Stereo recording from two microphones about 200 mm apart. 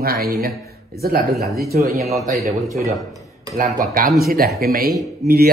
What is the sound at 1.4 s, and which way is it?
Speech, centre (ahead or behind).